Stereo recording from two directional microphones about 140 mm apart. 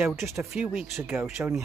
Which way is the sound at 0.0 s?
15° right (ahead or behind).